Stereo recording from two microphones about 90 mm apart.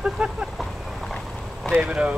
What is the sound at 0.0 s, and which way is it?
Vehicle, 10° right (ahead or behind).